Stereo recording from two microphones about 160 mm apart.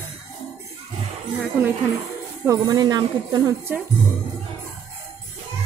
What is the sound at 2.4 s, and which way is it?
Speech, 25° right (ahead or behind).